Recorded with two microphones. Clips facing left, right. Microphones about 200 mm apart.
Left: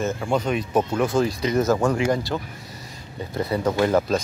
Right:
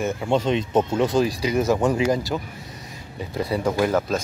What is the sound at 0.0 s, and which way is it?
Speech, 20° right (ahead or behind).